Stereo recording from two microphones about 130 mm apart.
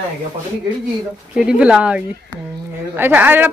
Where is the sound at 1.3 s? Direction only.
10° right (ahead or behind).